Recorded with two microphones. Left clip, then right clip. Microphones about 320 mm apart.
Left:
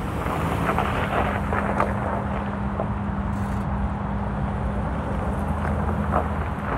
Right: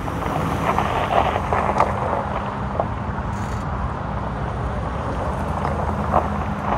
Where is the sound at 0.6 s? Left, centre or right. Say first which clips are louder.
Right 5 dB; centre.